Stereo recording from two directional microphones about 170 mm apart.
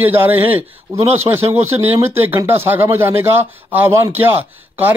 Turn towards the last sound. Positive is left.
turn(degrees=-10)  # may be behind; listen again after turning